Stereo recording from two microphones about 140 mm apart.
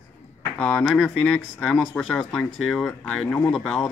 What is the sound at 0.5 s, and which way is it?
Speech, 10° left (ahead or behind).